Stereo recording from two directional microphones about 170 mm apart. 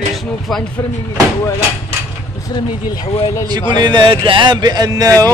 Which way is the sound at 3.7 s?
25° right (ahead or behind).